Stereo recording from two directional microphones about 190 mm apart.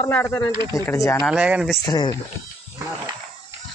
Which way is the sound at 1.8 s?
20° left (ahead or behind).